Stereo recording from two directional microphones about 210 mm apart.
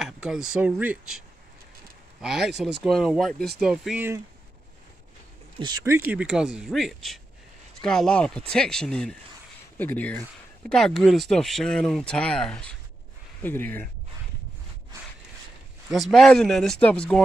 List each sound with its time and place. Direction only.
0.0 s speech: 5° right (ahead or behind)
2.2 s speech: centre (ahead or behind)
5.6 s speech: 15° right (ahead or behind)
6.1 s speech: 5° right (ahead or behind)
15.9 s speech: centre (ahead or behind)